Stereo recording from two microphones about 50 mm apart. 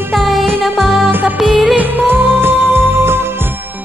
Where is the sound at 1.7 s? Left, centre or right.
Right.